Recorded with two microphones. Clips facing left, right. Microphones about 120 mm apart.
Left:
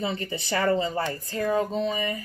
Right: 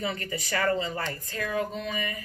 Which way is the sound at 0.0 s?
25° left (ahead or behind).